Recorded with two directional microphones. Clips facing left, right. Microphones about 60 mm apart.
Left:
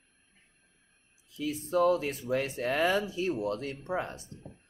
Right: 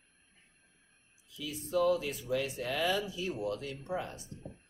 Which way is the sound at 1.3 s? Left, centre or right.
Left.